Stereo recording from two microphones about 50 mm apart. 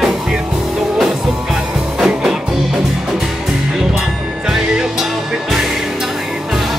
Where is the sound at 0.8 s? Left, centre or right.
Centre.